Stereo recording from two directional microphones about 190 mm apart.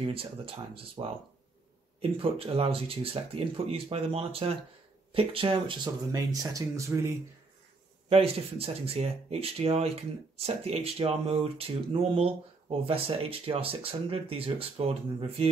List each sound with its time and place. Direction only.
0.0 s speech: 30° right (ahead or behind)
8.1 s speech: 30° right (ahead or behind)